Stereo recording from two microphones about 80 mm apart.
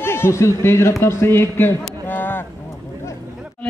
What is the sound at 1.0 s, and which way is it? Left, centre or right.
Speech, left.